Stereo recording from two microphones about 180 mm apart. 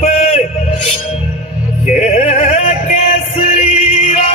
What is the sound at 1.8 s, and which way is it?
Music, 40° left (ahead or behind).